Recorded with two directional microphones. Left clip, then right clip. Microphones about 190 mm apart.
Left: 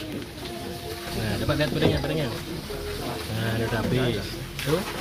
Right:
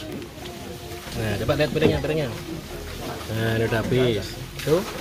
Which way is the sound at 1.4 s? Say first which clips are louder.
Right 4 dB; 35° right (ahead or behind).